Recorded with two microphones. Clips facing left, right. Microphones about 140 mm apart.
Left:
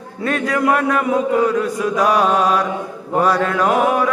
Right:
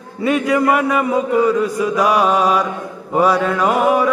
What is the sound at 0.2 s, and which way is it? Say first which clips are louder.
Mantra: right 3 dB; 5° right (ahead or behind).